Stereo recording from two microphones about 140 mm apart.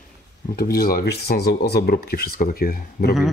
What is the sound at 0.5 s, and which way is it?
Speech, 90° left.